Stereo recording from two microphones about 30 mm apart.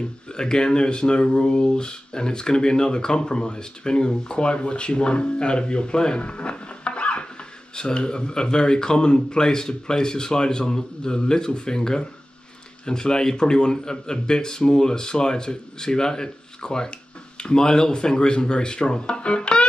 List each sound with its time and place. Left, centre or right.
0.3 s speech: left
6.2 s music: left
7.7 s speech: left